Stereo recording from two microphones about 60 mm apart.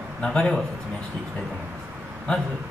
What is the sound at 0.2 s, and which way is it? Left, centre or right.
Speech, centre.